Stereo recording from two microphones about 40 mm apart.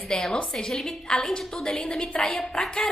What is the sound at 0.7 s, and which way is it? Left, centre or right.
Speech, centre.